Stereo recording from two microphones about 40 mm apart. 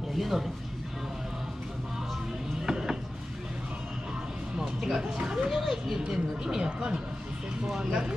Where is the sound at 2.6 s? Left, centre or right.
Centre.